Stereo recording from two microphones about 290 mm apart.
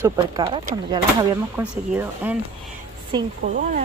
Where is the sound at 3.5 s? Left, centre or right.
Right.